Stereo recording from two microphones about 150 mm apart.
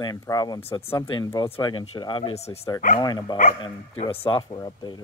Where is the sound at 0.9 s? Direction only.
30° left (ahead or behind).